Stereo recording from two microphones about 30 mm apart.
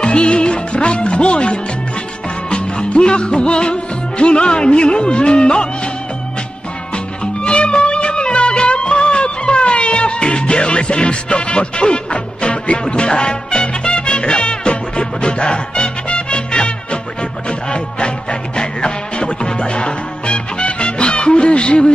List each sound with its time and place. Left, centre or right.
0.0 s music: left
7.4 s music: left